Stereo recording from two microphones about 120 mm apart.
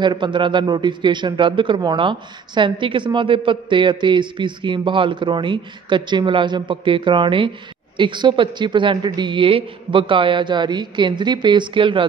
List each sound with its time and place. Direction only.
0.0 s a man's voice: 40° right (ahead or behind)